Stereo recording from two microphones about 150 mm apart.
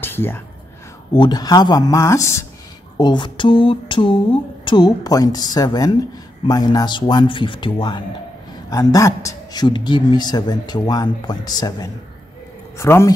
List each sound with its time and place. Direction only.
0.0 s a sound: 15° left (ahead or behind)
1.1 s a man's voice: 30° left (ahead or behind)
3.0 s a man's voice: 30° left (ahead or behind)
8.6 s a man's voice: 20° left (ahead or behind)